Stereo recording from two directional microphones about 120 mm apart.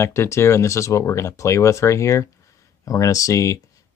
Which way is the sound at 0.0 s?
20° left (ahead or behind).